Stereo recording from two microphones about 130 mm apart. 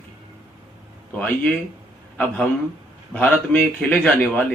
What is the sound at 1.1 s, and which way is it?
Speech, 10° left (ahead or behind).